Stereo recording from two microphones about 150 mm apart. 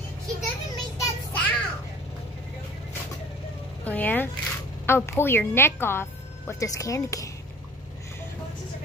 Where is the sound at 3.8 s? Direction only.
10° left (ahead or behind).